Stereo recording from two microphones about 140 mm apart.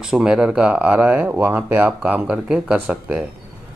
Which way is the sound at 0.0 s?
5° right (ahead or behind).